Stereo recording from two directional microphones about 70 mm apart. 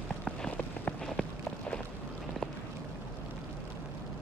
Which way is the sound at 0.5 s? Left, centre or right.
Centre.